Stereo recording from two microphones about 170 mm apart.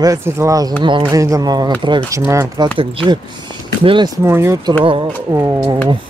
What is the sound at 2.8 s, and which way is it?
Speech, 30° right (ahead or behind).